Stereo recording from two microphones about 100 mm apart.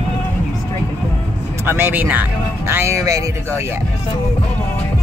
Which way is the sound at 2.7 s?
25° right (ahead or behind).